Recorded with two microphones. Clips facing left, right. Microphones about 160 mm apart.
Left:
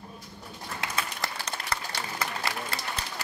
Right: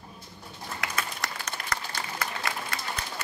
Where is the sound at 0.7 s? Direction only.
30° left (ahead or behind).